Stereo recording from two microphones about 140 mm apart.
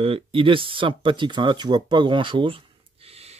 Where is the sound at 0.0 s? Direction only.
40° right (ahead or behind).